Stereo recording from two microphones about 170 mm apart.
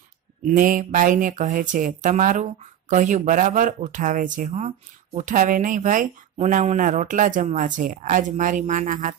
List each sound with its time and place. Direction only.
0.5 s speech: 50° right (ahead or behind)